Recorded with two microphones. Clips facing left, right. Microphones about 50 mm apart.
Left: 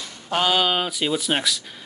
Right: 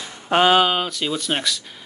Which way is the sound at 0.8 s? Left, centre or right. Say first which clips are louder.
Left 1 dB; centre.